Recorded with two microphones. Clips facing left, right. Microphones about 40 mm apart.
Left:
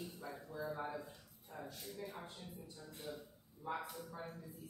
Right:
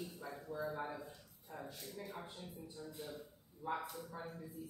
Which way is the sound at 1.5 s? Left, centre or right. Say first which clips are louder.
Right 1 dB; centre.